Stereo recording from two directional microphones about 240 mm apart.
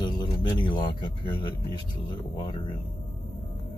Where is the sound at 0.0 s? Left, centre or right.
Centre.